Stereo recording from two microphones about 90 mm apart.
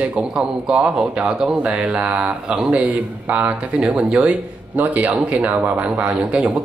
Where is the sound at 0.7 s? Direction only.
10° right (ahead or behind).